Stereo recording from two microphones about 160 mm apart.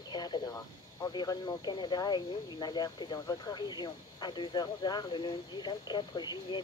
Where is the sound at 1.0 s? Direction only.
25° left (ahead or behind).